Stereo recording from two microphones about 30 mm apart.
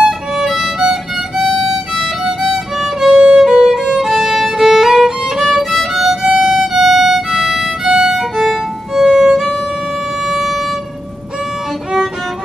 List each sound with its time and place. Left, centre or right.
0.5 s violin: centre
1.4 s music: centre
2.0 s violin: centre
3.2 s violin: right
10.2 s vehicle: centre